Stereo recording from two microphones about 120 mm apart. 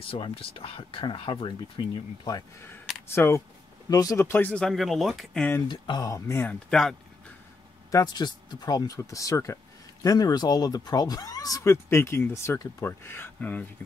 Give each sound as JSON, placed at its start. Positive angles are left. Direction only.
{"t": 0.0, "sound": "speech", "side_deg": 50}
{"t": 3.1, "sound": "speech", "side_deg": 20}
{"t": 4.3, "sound": "speech", "side_deg": 15}
{"t": 4.6, "sound": "speech", "side_deg": 0}
{"t": 5.7, "sound": "speech", "side_deg": 35}
{"t": 6.7, "sound": "speech", "side_deg": 5}
{"t": 7.9, "sound": "speech", "side_deg": 35}